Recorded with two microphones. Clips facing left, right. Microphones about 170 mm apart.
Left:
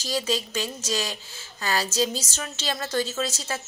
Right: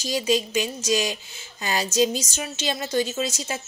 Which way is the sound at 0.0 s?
15° right (ahead or behind).